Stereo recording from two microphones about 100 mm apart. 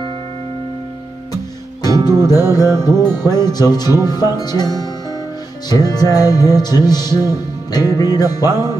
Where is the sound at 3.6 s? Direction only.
40° left (ahead or behind).